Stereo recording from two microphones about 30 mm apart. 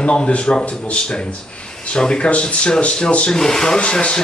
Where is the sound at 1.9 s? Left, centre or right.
Left.